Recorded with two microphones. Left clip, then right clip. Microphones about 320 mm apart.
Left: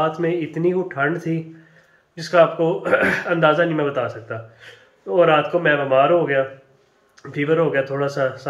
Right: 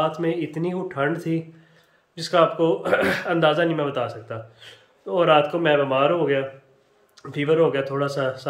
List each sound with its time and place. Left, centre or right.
0.0 s speech: centre